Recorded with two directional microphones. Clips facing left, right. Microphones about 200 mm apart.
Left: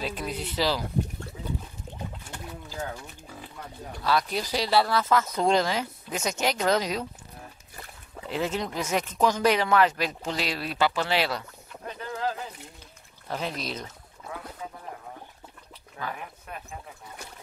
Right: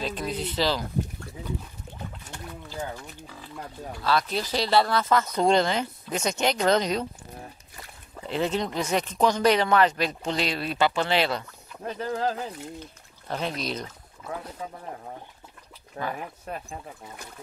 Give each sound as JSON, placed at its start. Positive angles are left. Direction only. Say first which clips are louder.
{"t": 0.0, "sound": "speech", "louder": "right 2 dB", "side_deg": 10}
{"t": 1.9, "sound": "a sound", "louder": "left 2 dB", "side_deg": 0}
{"t": 2.2, "sound": "wild animals", "louder": "even", "side_deg": 10}
{"t": 4.0, "sound": "speech", "louder": "right 1 dB", "side_deg": 15}
{"t": 8.3, "sound": "speech", "louder": "right 2 dB", "side_deg": 5}
{"t": 11.8, "sound": "speech", "louder": "right 4 dB", "side_deg": -35}
{"t": 13.3, "sound": "speech", "louder": "right 2 dB", "side_deg": 0}
{"t": 16.0, "sound": "speech", "louder": "right 4 dB", "side_deg": -40}